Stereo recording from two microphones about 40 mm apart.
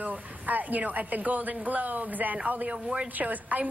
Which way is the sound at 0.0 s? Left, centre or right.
Right.